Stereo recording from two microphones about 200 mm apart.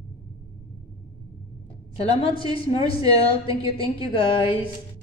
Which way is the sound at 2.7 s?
30° left (ahead or behind).